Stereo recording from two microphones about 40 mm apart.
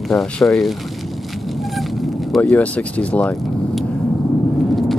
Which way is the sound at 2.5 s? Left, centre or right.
Left.